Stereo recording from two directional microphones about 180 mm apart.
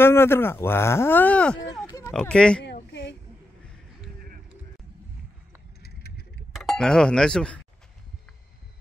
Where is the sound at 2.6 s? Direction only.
75° left (ahead or behind).